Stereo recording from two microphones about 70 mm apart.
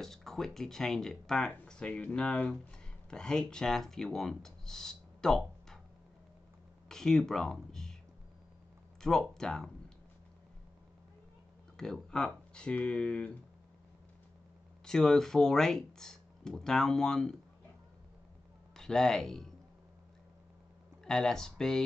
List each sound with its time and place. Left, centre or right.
0.0 s speech: centre
6.9 s speech: centre
9.0 s speech: centre
11.7 s speech: centre
14.9 s speech: centre
18.8 s speech: centre
21.0 s speech: centre